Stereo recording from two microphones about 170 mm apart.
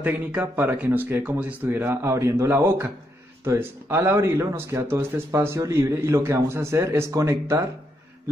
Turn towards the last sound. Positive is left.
turn(degrees=-20)  # may be behind; listen again after turning